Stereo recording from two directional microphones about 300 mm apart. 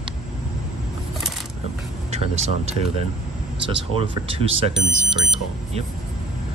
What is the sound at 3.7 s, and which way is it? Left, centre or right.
Speech, centre.